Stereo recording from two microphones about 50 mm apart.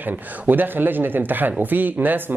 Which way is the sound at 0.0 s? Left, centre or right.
Right.